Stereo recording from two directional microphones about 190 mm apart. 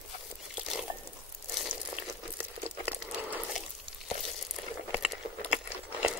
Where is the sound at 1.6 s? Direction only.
10° right (ahead or behind).